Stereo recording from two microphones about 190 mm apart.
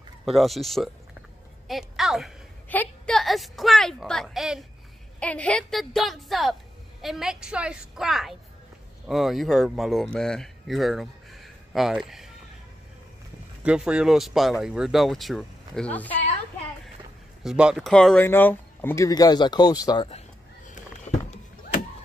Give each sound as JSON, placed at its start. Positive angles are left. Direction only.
{"t": 0.2, "sound": "speech", "side_deg": 0}
{"t": 13.6, "sound": "speech", "side_deg": -5}
{"t": 17.4, "sound": "speech", "side_deg": -5}
{"t": 20.1, "sound": "a sound", "side_deg": 40}